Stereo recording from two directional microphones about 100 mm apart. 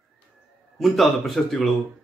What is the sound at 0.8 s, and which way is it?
Speech, centre (ahead or behind).